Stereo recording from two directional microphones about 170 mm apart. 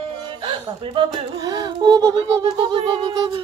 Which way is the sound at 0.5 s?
25° right (ahead or behind).